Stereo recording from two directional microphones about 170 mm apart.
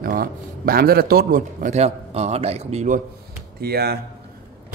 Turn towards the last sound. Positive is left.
turn(degrees=-65)  # may be behind; listen again after turning